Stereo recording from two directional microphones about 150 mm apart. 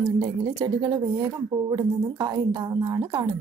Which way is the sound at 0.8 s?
25° right (ahead or behind).